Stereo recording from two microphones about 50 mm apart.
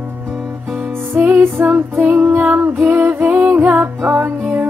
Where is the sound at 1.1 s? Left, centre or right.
Right.